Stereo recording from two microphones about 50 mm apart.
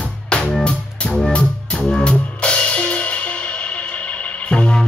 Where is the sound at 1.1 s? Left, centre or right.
Centre.